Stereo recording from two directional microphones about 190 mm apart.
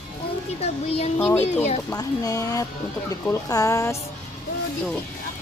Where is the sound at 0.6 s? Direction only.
35° left (ahead or behind).